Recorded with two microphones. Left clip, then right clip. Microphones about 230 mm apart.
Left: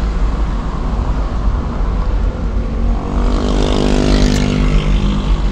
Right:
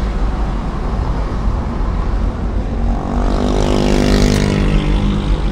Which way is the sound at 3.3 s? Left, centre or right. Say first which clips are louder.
Even; right.